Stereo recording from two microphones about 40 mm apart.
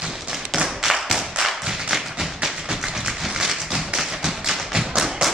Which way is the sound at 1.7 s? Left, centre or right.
Centre.